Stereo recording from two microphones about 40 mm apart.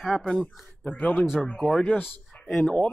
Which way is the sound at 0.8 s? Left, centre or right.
Left.